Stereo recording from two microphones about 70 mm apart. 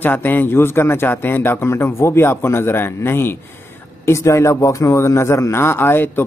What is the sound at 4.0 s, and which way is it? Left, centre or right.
A man's voice, left.